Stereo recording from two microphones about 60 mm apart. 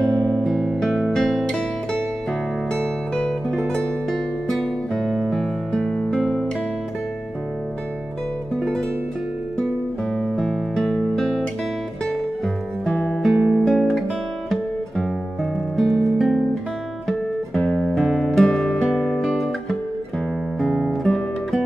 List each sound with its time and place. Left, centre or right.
0.2 s guitar: centre
3.2 s music: centre
4.9 s music: centre
10.7 s music: centre
12.9 s music: left
13.3 s music: centre
13.7 s guitar: centre
15.7 s music: centre
17.6 s music: centre
17.9 s music: centre
18.9 s guitar: centre